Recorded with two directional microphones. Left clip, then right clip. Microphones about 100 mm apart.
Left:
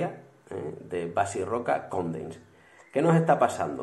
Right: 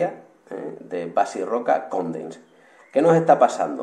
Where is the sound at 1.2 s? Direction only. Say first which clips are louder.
Right 6 dB; 5° left (ahead or behind).